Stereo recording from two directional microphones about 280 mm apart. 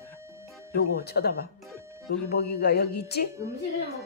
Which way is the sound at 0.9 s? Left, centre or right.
Left.